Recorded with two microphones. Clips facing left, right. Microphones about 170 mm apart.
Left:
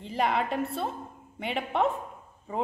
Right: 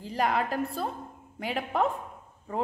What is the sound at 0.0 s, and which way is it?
A woman's voice, centre (ahead or behind).